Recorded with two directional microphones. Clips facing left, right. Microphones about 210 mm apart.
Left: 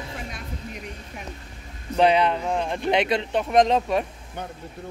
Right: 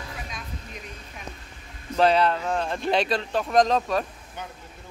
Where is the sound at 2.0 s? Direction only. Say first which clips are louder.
Left 1 dB; 15° left (ahead or behind).